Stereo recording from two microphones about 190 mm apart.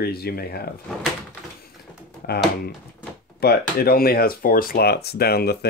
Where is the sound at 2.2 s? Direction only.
55° left (ahead or behind).